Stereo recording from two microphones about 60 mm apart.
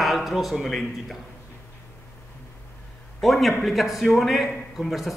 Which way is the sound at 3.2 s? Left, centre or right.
Centre.